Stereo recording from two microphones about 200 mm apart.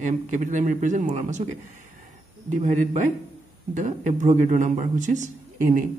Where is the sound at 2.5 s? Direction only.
35° right (ahead or behind).